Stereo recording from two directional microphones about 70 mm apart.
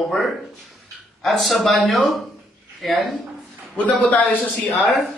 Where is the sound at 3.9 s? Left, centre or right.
Left.